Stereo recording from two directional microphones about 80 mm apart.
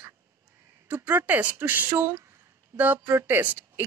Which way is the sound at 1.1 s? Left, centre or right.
Right.